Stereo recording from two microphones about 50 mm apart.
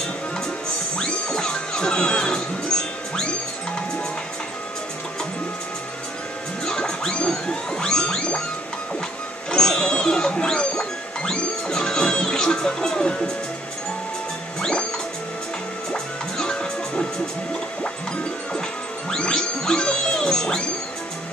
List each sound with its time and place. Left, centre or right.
0.9 s music: centre
6.6 s music: centre
9.5 s music: centre
14.6 s music: centre
15.9 s music: centre
19.0 s music: centre